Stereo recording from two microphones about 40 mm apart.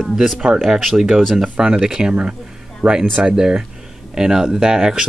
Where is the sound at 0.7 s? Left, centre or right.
Centre.